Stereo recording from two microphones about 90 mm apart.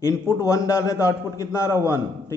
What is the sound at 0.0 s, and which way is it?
A man's voice, 35° left (ahead or behind).